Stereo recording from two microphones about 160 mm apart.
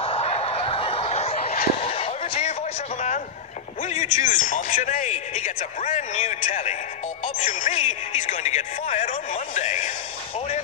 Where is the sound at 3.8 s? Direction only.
50° left (ahead or behind).